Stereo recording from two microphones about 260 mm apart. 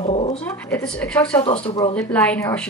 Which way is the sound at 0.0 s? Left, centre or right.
Left.